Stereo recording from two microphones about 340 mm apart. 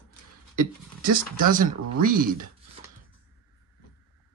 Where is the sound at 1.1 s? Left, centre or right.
Right.